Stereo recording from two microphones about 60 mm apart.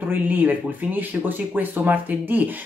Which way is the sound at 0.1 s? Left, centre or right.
Right.